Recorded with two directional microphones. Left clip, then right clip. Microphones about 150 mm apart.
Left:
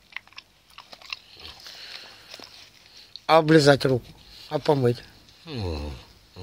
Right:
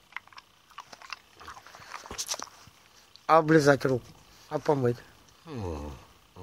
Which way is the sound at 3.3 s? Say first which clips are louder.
Left 4 dB; 30° left (ahead or behind).